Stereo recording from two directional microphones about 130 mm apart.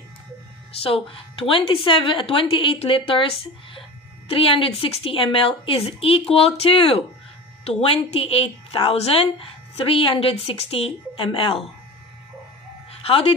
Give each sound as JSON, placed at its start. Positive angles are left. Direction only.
{"t": 0.7, "sound": "a woman's voice", "side_deg": 45}
{"t": 13.0, "sound": "speech", "side_deg": 50}